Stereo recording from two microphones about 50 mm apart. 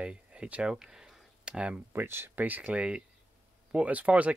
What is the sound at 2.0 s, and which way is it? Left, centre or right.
Speech, right.